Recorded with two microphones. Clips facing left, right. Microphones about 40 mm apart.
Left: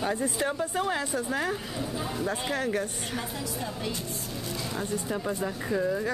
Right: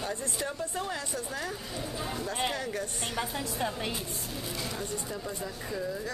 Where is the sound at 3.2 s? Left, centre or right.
Right.